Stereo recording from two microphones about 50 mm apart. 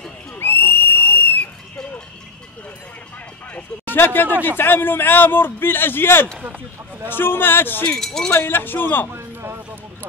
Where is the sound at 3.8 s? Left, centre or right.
Left.